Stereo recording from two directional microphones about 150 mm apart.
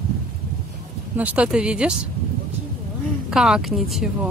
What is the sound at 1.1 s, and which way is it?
Speech, 10° right (ahead or behind).